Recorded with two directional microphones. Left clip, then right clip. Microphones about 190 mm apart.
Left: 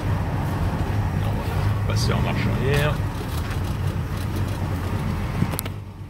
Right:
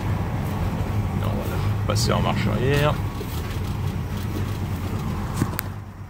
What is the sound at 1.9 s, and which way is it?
Speech, 45° right (ahead or behind).